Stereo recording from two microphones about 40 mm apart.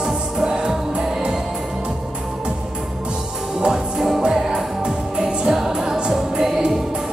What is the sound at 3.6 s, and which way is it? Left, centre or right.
Music, centre.